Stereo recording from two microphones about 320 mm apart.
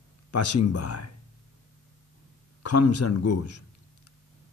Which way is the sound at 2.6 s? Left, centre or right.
Left.